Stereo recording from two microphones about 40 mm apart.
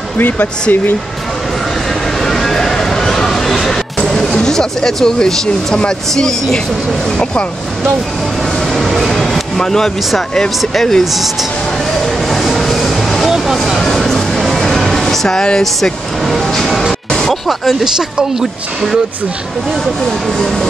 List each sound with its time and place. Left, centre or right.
0.2 s speech: left
2.1 s a sound: centre
4.0 s speech: centre
8.6 s a sound: centre
10.7 s speech: centre
11.1 s speech: centre
12.0 s a sound: centre
13.9 s music: centre
15.2 s speech: centre
15.6 s music: centre
17.5 s speech: centre
19.7 s speech: centre